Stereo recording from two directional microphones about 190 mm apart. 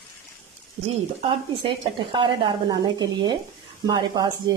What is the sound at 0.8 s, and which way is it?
A woman's voice, 30° right (ahead or behind).